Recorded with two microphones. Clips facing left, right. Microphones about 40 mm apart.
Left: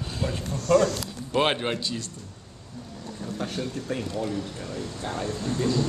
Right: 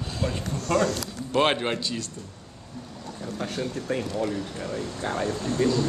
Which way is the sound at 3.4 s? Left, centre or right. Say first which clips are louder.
Right 1 dB; centre.